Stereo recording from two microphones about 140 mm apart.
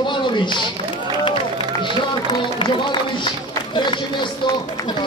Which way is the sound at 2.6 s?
35° left (ahead or behind).